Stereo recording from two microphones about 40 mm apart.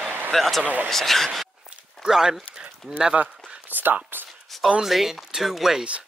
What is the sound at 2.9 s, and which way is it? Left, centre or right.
Speech, right.